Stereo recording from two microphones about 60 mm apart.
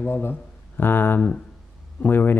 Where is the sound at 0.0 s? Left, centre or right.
Left.